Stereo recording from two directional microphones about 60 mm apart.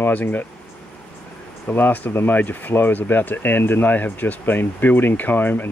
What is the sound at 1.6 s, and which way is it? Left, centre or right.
Speech, left.